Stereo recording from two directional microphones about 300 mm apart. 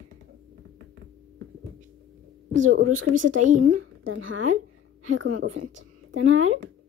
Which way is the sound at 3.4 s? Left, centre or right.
Right.